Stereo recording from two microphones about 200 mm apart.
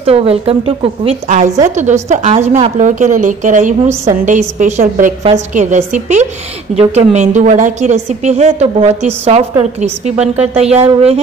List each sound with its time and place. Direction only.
0.0 s a woman's voice: 30° right (ahead or behind)